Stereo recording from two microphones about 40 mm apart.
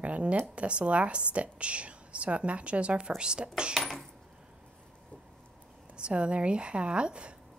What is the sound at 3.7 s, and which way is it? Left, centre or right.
Coin, centre.